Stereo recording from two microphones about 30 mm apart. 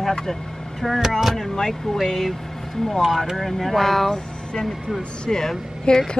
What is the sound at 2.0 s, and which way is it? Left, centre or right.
Speech, centre.